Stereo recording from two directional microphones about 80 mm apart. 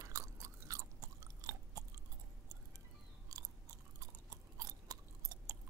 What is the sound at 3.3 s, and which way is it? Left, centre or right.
Chewing, right.